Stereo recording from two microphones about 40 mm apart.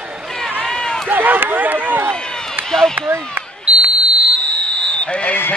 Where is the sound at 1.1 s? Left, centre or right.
Right.